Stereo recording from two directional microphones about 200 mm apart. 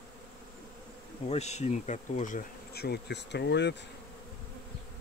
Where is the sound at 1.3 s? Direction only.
35° left (ahead or behind); by 3.7 s 60° left (ahead or behind).